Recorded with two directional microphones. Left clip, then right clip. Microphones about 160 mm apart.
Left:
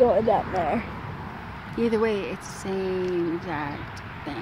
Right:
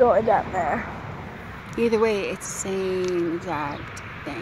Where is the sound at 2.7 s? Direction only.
15° left (ahead or behind).